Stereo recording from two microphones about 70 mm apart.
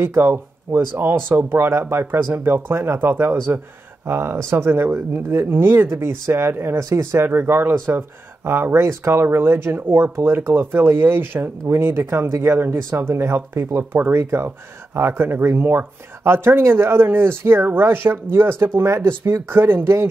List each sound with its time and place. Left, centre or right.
0.0 s speech: right
12.6 s speech: right